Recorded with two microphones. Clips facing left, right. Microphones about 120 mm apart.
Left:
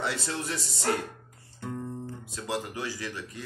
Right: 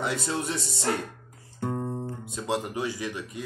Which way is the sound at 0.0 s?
20° right (ahead or behind).